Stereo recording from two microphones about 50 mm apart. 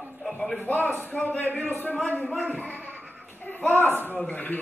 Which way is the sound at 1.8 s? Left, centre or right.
Left.